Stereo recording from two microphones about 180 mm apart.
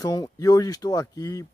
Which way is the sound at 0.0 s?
20° left (ahead or behind).